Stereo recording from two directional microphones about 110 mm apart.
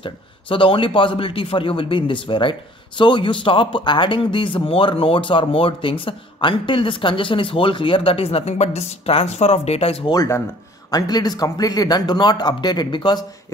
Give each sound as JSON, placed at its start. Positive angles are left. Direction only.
{"t": 0.0, "sound": "speech", "side_deg": 50}
{"t": 10.1, "sound": "a man's voice", "side_deg": 30}